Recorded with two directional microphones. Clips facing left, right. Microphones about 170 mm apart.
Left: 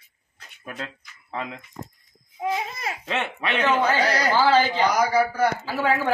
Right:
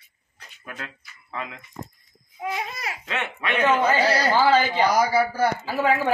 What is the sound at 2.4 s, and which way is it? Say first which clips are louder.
Babbling: left 3 dB; 25° left (ahead or behind).